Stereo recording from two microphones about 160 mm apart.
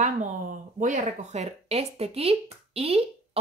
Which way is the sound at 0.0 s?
55° right (ahead or behind).